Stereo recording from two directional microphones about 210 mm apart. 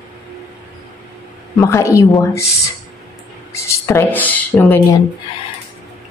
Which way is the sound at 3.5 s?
15° left (ahead or behind).